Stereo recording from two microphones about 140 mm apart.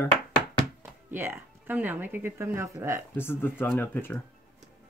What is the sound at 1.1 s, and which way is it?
Speech, 15° right (ahead or behind).